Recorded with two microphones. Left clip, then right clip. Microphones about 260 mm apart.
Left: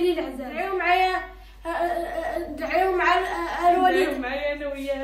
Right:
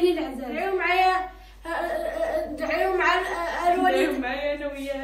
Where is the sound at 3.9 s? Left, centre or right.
Left.